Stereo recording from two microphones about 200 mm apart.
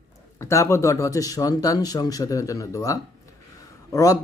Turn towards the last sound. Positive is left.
turn(degrees=15)  # may be behind; listen again after turning